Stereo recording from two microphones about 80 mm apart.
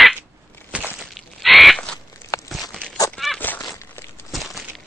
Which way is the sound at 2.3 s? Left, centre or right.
Left.